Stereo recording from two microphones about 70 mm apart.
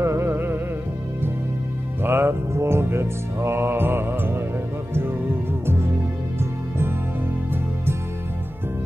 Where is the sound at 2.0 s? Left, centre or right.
Right.